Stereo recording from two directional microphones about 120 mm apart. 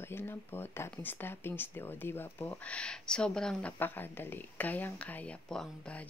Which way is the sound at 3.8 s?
15° left (ahead or behind).